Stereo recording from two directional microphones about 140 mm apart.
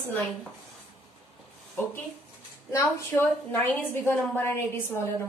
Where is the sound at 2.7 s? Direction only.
20° left (ahead or behind).